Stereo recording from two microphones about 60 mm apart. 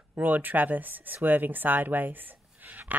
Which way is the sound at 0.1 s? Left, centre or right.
Right.